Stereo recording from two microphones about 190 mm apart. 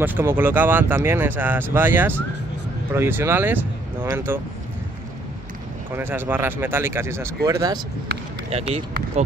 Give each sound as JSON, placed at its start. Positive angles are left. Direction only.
{"t": 0.0, "sound": "speech", "side_deg": -10}
{"t": 5.9, "sound": "speech", "side_deg": -10}
{"t": 8.5, "sound": "speech", "side_deg": -30}